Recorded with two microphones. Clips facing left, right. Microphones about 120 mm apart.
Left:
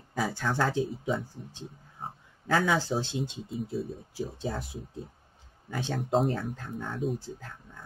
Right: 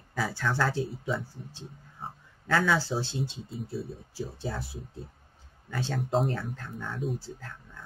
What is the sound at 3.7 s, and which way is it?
Speech, 45° left (ahead or behind).